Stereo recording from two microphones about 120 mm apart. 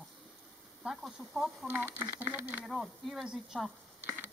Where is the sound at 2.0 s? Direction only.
15° right (ahead or behind).